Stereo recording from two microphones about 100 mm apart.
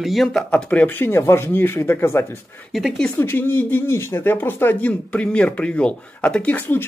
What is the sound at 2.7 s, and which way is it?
Speech, centre (ahead or behind).